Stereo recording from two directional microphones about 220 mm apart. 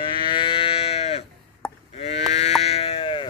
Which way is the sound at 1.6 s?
5° left (ahead or behind).